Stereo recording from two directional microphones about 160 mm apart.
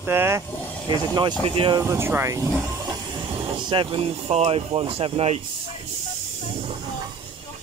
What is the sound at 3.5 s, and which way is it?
Speech, 30° right (ahead or behind).